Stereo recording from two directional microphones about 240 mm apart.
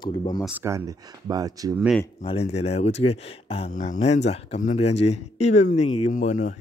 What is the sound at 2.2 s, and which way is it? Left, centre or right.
Speech, left.